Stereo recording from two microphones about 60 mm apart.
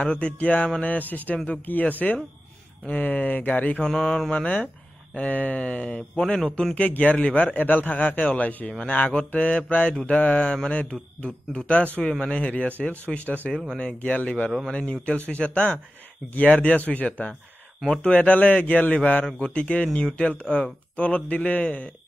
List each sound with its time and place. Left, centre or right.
0.0 s a man's voice: centre
3.8 s mantra: centre
4.3 s a man's voice: left
6.7 s a man's voice: left
12.0 s a man's voice: centre
17.3 s a sound: centre
18.0 s a man's voice: left